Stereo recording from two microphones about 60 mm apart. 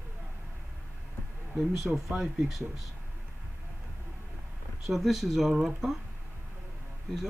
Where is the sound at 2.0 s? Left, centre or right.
Centre.